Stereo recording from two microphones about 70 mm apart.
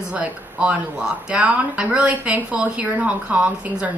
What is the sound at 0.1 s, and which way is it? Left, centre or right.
A woman's voice, centre.